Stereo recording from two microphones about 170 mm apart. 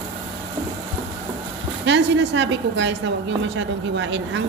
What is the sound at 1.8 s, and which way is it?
A woman's voice, 90° right.